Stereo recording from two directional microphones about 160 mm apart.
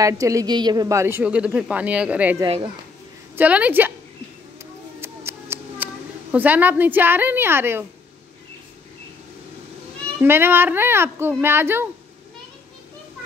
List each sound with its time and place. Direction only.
0.0 s a woman's voice: 20° right (ahead or behind)
2.4 s speech: 30° right (ahead or behind)
3.3 s a woman's voice: 10° right (ahead or behind)
5.0 s a sound: 15° right (ahead or behind)
6.3 s a woman's voice: 10° right (ahead or behind)
10.2 s a woman's voice: 15° right (ahead or behind)